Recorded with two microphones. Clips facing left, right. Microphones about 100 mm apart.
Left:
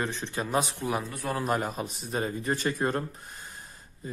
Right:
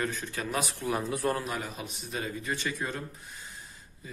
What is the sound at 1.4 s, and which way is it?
A man's voice, 45° left (ahead or behind).